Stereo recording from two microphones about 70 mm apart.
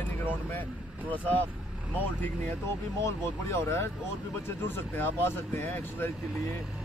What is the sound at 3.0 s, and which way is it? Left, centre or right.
Speech, left.